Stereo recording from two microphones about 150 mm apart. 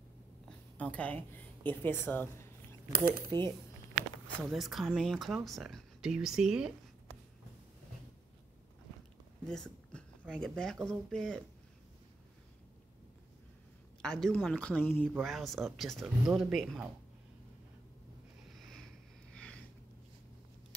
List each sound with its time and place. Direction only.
0.5 s speech: 10° left (ahead or behind)
4.4 s speech: centre (ahead or behind)
9.5 s a sound: 5° left (ahead or behind)
10.3 s speech: 5° left (ahead or behind)
14.0 s speech: 5° left (ahead or behind)
18.5 s a sound: centre (ahead or behind)